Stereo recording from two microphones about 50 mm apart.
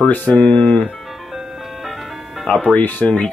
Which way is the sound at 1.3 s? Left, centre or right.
Centre.